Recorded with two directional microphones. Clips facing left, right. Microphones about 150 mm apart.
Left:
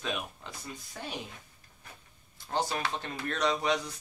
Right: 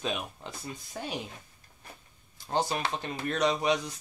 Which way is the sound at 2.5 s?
20° right (ahead or behind).